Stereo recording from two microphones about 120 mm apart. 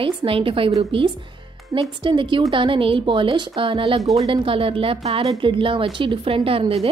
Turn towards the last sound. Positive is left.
turn(degrees=-50)  # may be behind; listen again after turning